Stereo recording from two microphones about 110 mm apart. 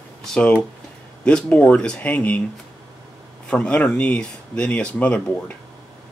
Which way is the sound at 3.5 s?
10° left (ahead or behind).